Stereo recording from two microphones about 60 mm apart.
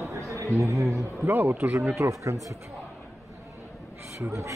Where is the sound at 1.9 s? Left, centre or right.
Right.